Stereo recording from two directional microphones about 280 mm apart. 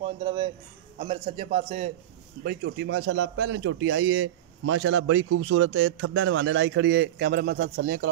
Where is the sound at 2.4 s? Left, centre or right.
Right.